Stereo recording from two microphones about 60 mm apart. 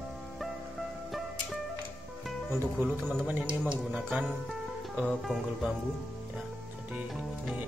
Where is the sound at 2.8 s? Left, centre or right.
Right.